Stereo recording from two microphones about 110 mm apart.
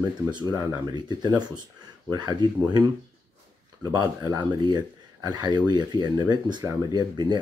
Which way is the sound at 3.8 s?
35° right (ahead or behind).